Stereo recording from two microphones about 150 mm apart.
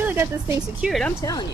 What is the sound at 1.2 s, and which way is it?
Speech, 25° left (ahead or behind).